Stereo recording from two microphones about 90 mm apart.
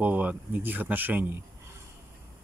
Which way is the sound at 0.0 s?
15° right (ahead or behind).